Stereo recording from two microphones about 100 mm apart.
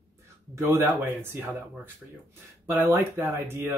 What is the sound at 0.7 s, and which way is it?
Speech, 25° right (ahead or behind).